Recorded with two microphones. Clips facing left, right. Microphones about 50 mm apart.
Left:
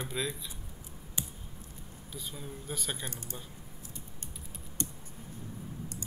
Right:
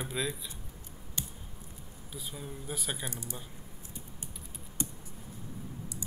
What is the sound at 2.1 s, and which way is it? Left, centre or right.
Speech, centre.